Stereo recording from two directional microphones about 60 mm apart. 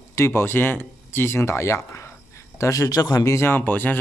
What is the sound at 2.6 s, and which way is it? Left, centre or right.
Speech, left.